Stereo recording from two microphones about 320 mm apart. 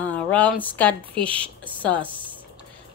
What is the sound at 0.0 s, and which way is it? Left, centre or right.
A woman's voice, centre.